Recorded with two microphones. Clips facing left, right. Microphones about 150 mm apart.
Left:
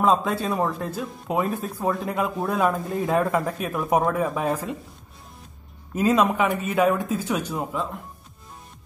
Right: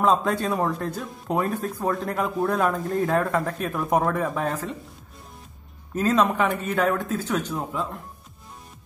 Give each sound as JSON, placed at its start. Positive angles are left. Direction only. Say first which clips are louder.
{"t": 0.0, "sound": "speech", "louder": "even", "side_deg": 0}
{"t": 5.9, "sound": "a man's voice", "louder": "left 1 dB", "side_deg": 10}